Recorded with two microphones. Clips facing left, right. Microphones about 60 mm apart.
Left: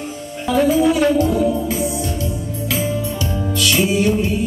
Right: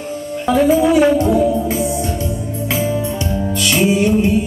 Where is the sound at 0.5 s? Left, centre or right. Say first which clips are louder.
Right 2 dB; right.